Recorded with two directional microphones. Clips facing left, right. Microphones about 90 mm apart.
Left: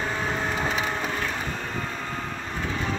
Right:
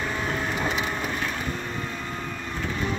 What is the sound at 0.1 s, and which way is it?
Wood, 30° left (ahead or behind).